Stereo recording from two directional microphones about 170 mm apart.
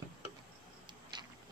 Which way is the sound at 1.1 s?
25° right (ahead or behind).